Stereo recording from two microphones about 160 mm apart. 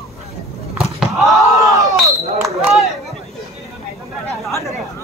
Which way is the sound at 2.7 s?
Centre (ahead or behind).